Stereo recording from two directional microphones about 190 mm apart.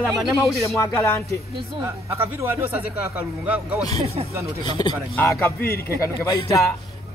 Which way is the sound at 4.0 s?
35° right (ahead or behind).